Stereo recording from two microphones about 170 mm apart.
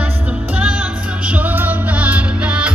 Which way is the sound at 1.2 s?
10° right (ahead or behind).